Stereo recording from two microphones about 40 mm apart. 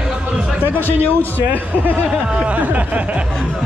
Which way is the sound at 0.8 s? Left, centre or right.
Left.